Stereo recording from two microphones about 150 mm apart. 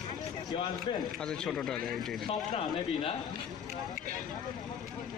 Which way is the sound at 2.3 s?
40° left (ahead or behind).